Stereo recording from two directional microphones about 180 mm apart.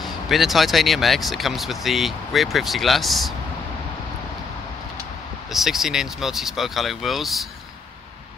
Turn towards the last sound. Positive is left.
turn(degrees=0)  # may be behind; listen again after turning